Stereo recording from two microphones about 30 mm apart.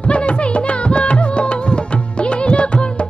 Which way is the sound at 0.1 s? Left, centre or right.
Left.